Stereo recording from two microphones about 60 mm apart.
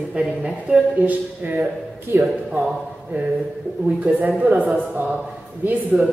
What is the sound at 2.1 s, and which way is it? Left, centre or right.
Speech, right.